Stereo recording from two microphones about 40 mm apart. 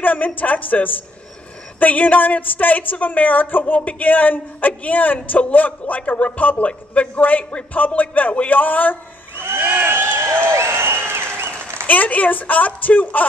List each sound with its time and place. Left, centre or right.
0.0 s a woman's voice: left
9.4 s crowd: right
9.8 s applause: right
11.9 s a woman's voice: left